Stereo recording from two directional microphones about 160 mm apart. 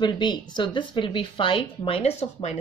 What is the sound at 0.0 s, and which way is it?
Speech, 25° left (ahead or behind).